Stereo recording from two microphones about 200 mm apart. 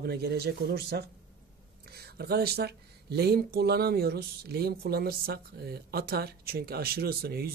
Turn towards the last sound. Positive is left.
turn(degrees=-50)  # may be behind; listen again after turning